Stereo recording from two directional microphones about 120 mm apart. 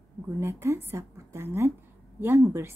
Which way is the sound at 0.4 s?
25° right (ahead or behind).